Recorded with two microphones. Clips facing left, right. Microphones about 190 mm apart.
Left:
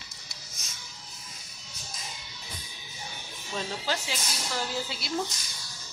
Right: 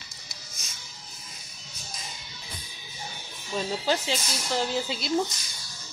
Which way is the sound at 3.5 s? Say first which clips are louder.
Right 5 dB; 15° right (ahead or behind).